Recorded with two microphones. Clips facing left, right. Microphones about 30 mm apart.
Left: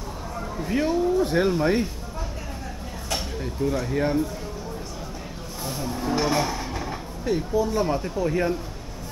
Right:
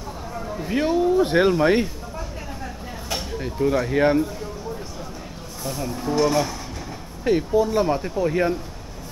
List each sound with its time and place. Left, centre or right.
0.4 s speech: centre; by 1.9 s right
3.3 s speech: centre
3.9 s speech: right
5.6 s speech: centre
7.2 s speech: right
7.8 s speech: centre